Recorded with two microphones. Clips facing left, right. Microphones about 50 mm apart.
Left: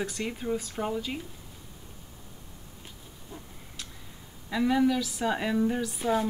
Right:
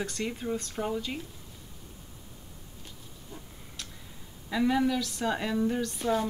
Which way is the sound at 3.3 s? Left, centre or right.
Centre.